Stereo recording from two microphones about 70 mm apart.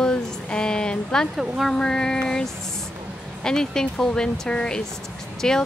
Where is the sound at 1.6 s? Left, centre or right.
Centre.